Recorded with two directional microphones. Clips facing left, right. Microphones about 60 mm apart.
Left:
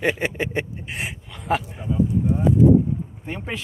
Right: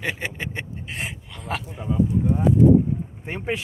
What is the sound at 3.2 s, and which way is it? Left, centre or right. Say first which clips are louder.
Speech: even; right.